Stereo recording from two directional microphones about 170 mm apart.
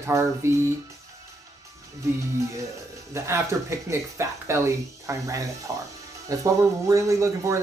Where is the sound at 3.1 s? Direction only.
15° right (ahead or behind).